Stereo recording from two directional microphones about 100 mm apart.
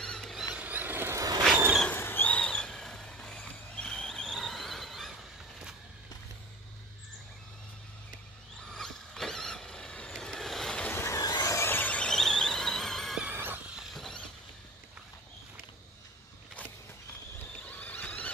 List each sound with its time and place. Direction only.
0.0 s squeal: 5° left (ahead or behind)
0.5 s vehicle: 15° right (ahead or behind)
1.1 s vehicle: 40° right (ahead or behind)
1.9 s a sound: 20° left (ahead or behind); by 5.8 s 5° right (ahead or behind)
8.7 s vehicle: 5° left (ahead or behind)
10.9 s squeal: 25° left (ahead or behind); by 13.2 s 5° left (ahead or behind)
13.2 s a sound: 20° right (ahead or behind)
13.7 s vehicle: centre (ahead or behind)
17.6 s neigh: 15° left (ahead or behind)